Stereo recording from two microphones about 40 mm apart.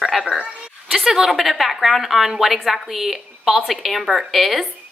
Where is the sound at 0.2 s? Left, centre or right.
Right.